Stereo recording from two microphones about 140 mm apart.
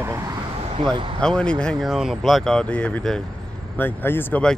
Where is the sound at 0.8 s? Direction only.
40° right (ahead or behind).